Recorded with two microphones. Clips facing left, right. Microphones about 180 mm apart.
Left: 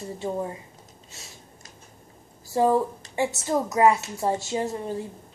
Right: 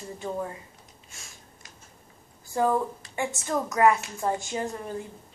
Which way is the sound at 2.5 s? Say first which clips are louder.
Left 4 dB; 25° left (ahead or behind).